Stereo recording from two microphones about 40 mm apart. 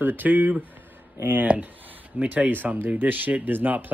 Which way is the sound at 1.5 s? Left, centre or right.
Right.